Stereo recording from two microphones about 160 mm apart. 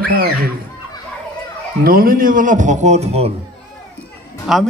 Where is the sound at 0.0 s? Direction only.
65° right (ahead or behind).